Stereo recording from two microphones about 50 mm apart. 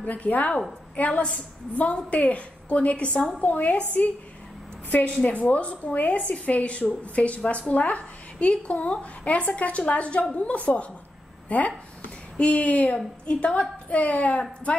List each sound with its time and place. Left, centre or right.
0.0 s a woman's voice: left
5.2 s a woman's voice: left